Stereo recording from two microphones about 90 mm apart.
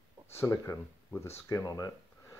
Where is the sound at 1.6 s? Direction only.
40° left (ahead or behind).